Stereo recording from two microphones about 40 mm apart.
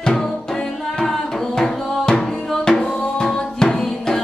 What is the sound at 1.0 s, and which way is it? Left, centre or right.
Music, centre.